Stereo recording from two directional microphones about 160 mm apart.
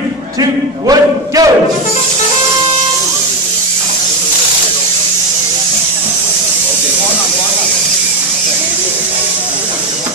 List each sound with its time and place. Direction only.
0.4 s speech: 25° right (ahead or behind)